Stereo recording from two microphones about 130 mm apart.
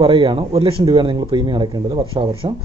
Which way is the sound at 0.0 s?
40° right (ahead or behind).